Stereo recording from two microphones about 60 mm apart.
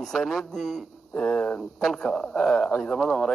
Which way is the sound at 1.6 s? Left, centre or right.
Centre.